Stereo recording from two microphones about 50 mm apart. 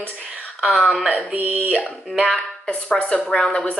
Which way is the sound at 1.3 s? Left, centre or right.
Right.